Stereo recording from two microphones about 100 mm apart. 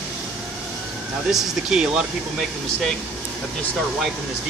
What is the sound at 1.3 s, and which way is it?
Speech, 5° right (ahead or behind).